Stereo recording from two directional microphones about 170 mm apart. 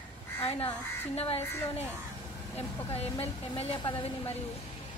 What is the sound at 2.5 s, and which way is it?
A woman's voice, 35° left (ahead or behind).